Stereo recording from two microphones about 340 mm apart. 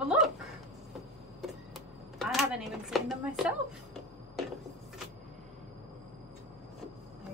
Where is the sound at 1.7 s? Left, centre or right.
Centre.